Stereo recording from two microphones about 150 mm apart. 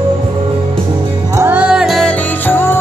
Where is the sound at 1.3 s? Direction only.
10° right (ahead or behind); by 2.7 s 15° left (ahead or behind).